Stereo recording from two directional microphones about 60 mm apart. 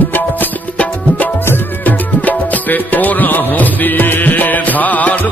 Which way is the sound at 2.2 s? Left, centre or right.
Left.